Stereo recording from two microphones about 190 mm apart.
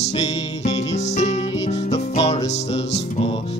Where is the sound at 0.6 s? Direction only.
35° left (ahead or behind).